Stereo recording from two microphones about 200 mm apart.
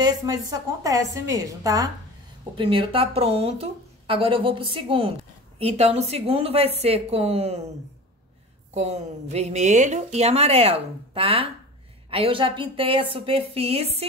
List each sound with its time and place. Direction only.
0.0 s a woman's voice: 15° right (ahead or behind)
2.5 s a woman's voice: 25° right (ahead or behind)
8.7 s a woman's voice: 30° right (ahead or behind)